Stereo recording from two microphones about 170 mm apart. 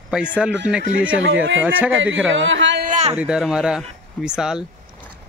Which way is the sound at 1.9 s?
90° right.